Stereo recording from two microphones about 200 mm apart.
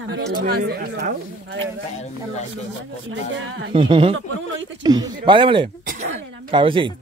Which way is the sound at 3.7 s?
25° right (ahead or behind).